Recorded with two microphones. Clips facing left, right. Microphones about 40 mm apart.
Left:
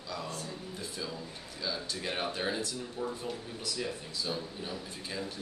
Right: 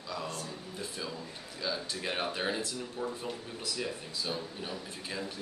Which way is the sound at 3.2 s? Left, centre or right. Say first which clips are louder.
Even; right.